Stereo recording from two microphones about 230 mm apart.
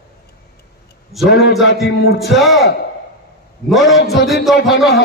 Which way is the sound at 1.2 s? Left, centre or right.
Left.